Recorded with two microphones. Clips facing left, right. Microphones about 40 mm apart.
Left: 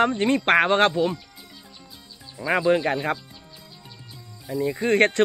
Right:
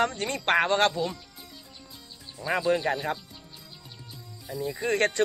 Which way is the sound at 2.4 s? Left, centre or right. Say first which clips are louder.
Left 5 dB; left.